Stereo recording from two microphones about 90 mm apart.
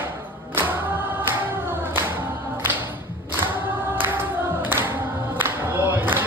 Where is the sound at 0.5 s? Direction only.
25° right (ahead or behind).